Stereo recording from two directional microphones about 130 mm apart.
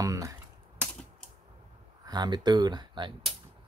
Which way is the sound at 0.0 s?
25° right (ahead or behind).